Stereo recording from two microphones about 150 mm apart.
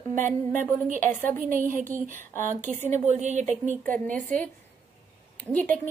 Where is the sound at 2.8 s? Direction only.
50° right (ahead or behind).